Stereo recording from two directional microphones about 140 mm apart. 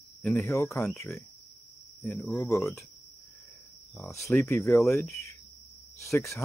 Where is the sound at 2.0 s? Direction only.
15° left (ahead or behind).